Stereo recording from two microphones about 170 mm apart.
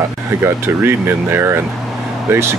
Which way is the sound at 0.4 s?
15° right (ahead or behind).